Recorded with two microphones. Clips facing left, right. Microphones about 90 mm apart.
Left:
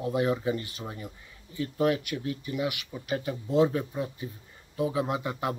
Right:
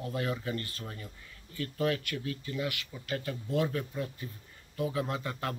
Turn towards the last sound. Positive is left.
turn(degrees=20)  # may be behind; listen again after turning